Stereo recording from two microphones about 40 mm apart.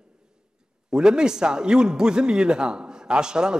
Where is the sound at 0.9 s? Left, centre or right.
Centre.